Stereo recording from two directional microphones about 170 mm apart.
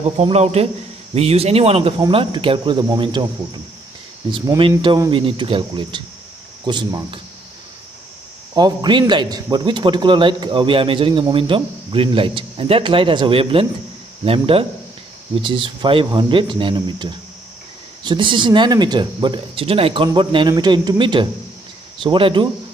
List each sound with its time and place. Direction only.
0.2 s a man's voice: 40° right (ahead or behind)
8.5 s a man's voice: 25° right (ahead or behind)